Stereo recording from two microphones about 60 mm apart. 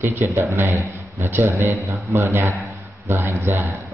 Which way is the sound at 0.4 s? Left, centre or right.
Right.